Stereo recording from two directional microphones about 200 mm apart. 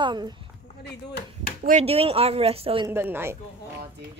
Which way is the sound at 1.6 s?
35° right (ahead or behind).